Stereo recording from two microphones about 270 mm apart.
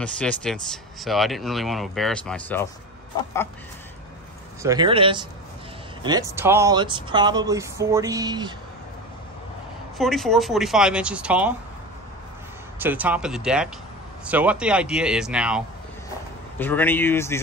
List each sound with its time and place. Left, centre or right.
0.0 s speech: centre
4.6 s speech: centre
9.9 s speech: centre
12.7 s speech: centre
16.5 s speech: centre